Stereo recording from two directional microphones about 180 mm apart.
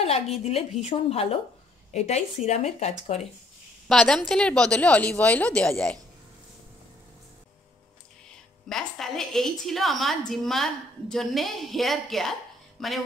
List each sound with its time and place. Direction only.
0.0 s a woman's voice: 35° left (ahead or behind)
3.9 s a woman's voice: 5° left (ahead or behind)
8.6 s a woman's voice: centre (ahead or behind)